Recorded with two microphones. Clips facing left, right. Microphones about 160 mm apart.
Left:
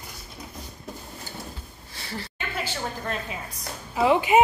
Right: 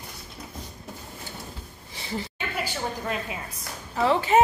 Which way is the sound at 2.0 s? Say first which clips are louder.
Right 3 dB; 15° right (ahead or behind).